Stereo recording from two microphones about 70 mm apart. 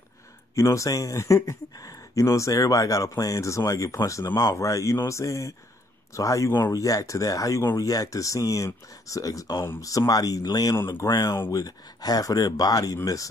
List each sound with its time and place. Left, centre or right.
0.6 s speech: left
9.8 s speech: left
12.9 s speech: left